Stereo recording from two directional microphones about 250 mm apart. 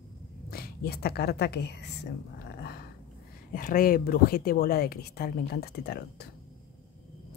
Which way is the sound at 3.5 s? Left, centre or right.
Left.